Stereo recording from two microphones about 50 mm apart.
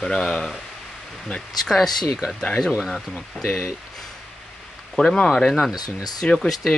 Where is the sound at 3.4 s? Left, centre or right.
Centre.